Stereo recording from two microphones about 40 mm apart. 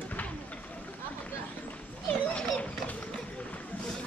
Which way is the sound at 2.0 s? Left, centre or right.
Left.